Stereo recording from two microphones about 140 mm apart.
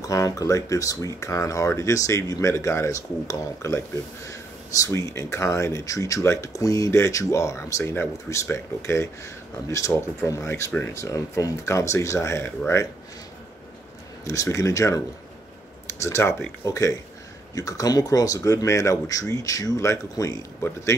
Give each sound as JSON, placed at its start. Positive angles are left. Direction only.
{"t": 0.0, "sound": "speech", "side_deg": 25}
{"t": 14.2, "sound": "speech", "side_deg": 20}